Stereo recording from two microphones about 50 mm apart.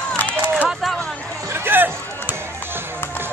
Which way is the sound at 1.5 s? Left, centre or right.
Right.